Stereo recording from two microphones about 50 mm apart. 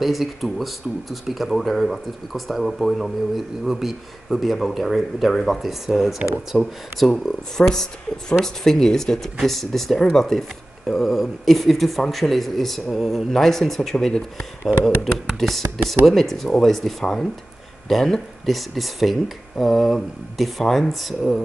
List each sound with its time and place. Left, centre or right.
0.0 s speech: centre